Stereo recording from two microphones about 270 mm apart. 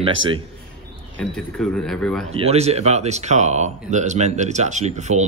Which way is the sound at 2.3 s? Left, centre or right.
Right.